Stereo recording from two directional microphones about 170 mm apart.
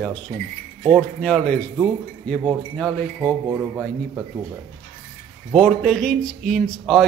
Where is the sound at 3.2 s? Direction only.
20° right (ahead or behind).